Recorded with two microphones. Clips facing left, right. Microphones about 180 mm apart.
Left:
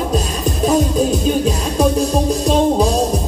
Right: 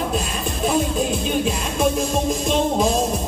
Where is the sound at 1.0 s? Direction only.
40° left (ahead or behind).